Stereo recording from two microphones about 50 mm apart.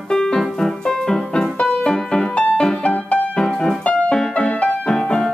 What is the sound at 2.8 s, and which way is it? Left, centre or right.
Music, left.